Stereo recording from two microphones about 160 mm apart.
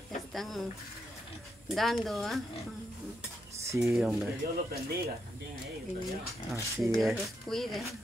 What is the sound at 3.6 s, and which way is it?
Speech, 20° right (ahead or behind).